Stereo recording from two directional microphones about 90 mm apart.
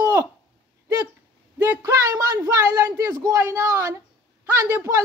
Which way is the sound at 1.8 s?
35° right (ahead or behind).